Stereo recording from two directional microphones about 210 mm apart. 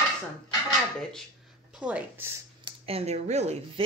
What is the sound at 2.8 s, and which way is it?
A woman's voice, 30° right (ahead or behind).